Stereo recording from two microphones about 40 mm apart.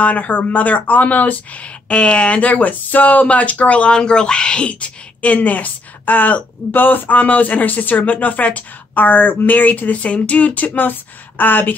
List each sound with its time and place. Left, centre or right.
0.0 s speech: left
3.9 s speech: left
10.0 s speech: left